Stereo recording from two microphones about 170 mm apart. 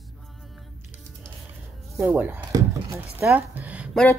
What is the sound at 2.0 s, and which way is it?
Speech, 10° right (ahead or behind).